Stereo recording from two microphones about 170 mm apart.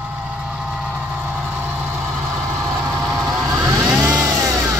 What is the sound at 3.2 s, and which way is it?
Vehicle, 20° right (ahead or behind).